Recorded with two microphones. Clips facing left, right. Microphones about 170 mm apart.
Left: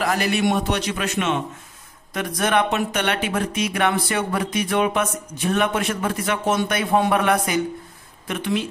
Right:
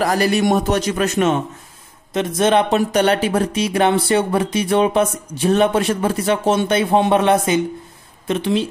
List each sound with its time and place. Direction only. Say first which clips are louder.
0.0 s a man's voice: right 4 dB; 40° right (ahead or behind)
2.1 s speech: right 5 dB; 25° right (ahead or behind)